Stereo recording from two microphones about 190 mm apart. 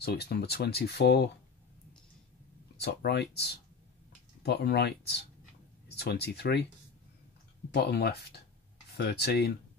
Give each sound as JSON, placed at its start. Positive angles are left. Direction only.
{"t": 0.0, "sound": "speech", "side_deg": 55}
{"t": 2.8, "sound": "speech", "side_deg": 60}
{"t": 7.7, "sound": "speech", "side_deg": 55}